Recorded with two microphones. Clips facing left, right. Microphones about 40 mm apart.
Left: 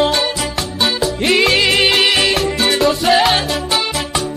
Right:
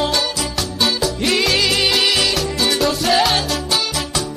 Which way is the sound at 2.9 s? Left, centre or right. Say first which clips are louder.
Left 4 dB; centre.